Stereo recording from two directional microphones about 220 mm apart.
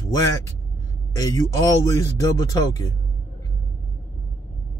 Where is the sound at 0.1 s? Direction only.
15° left (ahead or behind).